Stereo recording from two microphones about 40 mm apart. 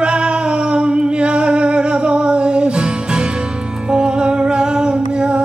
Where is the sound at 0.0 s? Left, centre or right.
Right.